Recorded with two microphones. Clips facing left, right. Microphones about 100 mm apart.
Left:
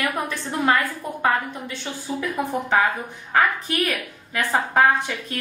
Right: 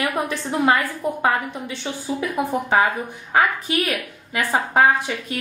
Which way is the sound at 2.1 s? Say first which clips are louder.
Right 2 dB; 15° right (ahead or behind).